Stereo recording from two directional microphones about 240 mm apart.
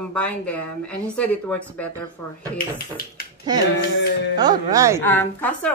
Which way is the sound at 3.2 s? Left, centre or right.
Left.